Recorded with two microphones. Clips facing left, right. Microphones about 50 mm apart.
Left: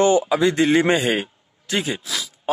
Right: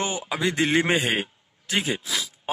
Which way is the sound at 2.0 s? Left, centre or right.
Centre.